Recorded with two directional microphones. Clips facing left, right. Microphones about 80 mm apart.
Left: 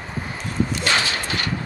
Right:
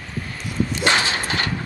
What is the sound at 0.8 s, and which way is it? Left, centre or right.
Clip-clop, right.